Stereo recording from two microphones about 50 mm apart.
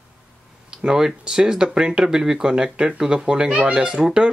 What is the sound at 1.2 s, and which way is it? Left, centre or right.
Speech, centre.